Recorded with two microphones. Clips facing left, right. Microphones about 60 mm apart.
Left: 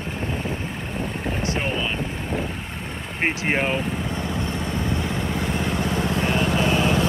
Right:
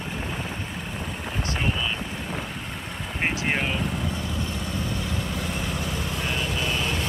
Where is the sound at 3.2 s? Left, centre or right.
Left.